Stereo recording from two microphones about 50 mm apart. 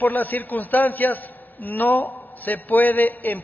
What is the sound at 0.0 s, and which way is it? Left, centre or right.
A man's voice, left.